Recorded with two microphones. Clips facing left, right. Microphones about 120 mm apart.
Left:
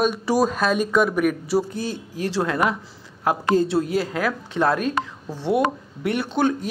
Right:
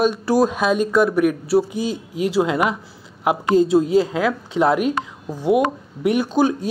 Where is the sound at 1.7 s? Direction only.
15° right (ahead or behind).